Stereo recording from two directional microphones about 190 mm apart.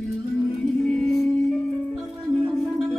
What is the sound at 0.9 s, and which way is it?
Music, centre (ahead or behind).